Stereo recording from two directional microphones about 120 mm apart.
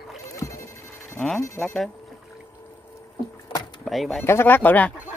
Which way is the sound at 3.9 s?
Centre (ahead or behind).